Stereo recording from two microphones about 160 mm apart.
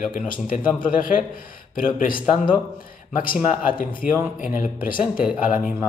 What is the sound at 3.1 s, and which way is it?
Speech, 60° left (ahead or behind).